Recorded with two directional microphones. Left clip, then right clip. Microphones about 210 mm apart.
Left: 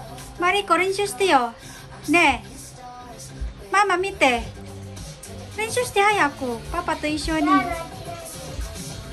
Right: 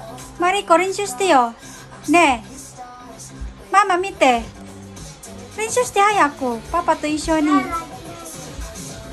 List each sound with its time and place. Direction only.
0.4 s a woman's voice: 15° right (ahead or behind)
3.7 s a woman's voice: 10° right (ahead or behind)
5.6 s a woman's voice: 15° right (ahead or behind)